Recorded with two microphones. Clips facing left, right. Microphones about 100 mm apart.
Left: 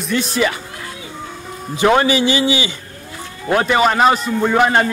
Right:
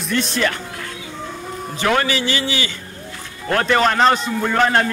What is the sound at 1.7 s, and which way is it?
A man's voice, 20° left (ahead or behind).